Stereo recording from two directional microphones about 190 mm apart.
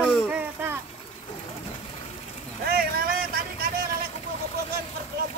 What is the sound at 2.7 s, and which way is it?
Vehicle, 55° right (ahead or behind).